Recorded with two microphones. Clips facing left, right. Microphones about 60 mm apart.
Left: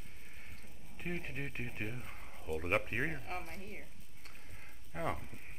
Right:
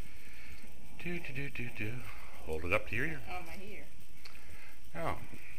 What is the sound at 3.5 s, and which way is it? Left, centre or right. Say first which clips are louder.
Speech: left 1 dB; left.